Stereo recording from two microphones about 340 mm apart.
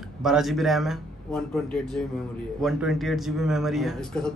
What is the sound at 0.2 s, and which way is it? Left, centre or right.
Speech, centre.